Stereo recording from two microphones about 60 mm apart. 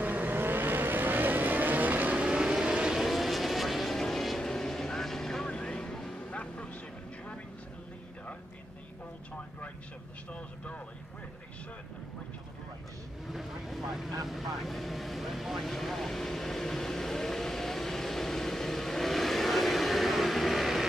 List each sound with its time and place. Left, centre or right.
0.0 s vehicle: right; by 6.1 s centre
6.3 s vehicle: left
10.3 s speech: left
13.3 s vehicle: centre